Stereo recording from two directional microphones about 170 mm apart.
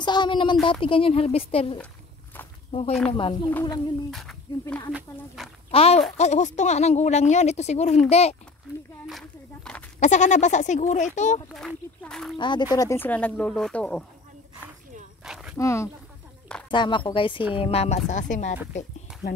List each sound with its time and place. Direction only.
0.0 s speech: 25° left (ahead or behind)
3.1 s speech: 30° left (ahead or behind)
3.4 s speech: 20° left (ahead or behind)
3.7 s speech: centre (ahead or behind)
5.7 s speech: 35° left (ahead or behind)
9.9 s speech: 45° left (ahead or behind)
11.5 s speech: centre (ahead or behind)
12.4 s speech: 30° left (ahead or behind)
12.7 s speech: 15° left (ahead or behind)
15.2 s speech: 5° right (ahead or behind)
15.5 s speech: 15° left (ahead or behind)
16.7 s speech: 25° left (ahead or behind); by 18.6 s 45° left (ahead or behind)